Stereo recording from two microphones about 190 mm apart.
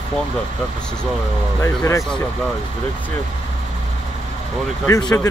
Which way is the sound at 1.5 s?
15° left (ahead or behind).